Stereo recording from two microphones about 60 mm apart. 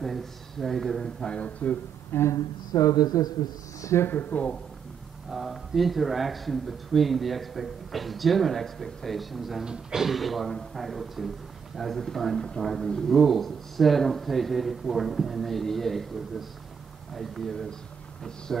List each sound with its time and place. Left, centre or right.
0.0 s a sound: centre
1.0 s a man's voice: centre
2.3 s speech: left
4.1 s speech: left
5.3 s speech: centre